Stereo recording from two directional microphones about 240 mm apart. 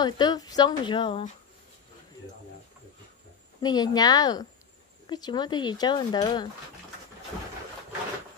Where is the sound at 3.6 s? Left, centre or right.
Centre.